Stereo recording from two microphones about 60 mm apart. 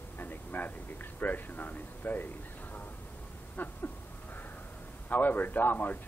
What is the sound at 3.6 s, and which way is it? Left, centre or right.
Speech, left.